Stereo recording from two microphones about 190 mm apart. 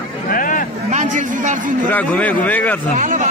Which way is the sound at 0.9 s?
40° right (ahead or behind).